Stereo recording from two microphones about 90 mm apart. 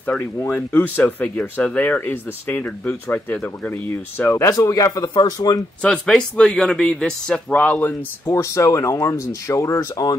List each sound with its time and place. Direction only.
0.0 s speech: 15° left (ahead or behind); by 5.1 s 40° left (ahead or behind)
5.1 s speech: 50° left (ahead or behind)
5.8 s speech: 10° left (ahead or behind)
8.3 s speech: 35° left (ahead or behind)